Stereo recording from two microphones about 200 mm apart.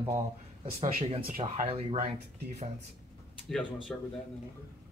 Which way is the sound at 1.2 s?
45° right (ahead or behind).